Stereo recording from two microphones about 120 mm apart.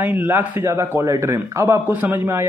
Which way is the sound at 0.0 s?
15° right (ahead or behind).